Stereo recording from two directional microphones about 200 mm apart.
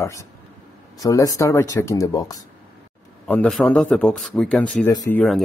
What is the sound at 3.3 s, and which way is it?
A man's voice, 5° left (ahead or behind).